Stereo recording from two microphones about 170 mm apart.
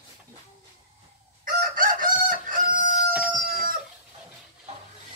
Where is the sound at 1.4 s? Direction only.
55° right (ahead or behind).